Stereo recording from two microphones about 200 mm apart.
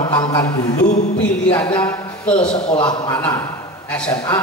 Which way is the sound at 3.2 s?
10° left (ahead or behind).